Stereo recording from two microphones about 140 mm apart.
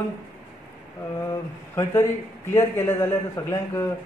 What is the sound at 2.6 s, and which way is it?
A man's voice, 20° left (ahead or behind).